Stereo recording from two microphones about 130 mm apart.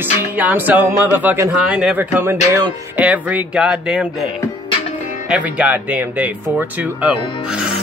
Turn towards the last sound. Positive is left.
turn(degrees=-10)  # may be behind; listen again after turning